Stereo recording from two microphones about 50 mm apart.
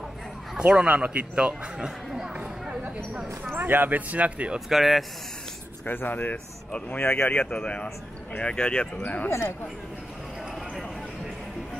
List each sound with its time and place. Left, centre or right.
0.6 s speech: centre
3.5 s speech: right
4.6 s speech: centre
5.9 s speech: left
7.4 s speech: left